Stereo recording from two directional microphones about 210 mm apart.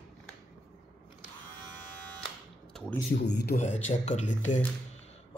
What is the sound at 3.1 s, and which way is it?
Speech, 55° left (ahead or behind).